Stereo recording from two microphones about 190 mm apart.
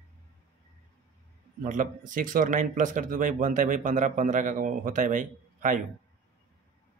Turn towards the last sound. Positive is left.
turn(degrees=-40)  # may be behind; listen again after turning